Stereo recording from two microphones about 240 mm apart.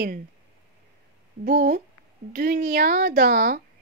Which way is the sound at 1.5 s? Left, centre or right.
Right.